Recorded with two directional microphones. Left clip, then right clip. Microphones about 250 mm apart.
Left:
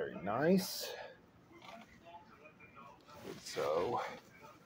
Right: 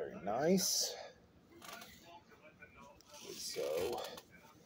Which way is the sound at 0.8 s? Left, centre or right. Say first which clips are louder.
Right 4 dB; left.